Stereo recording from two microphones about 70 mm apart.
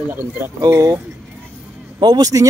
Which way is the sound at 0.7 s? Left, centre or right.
Right.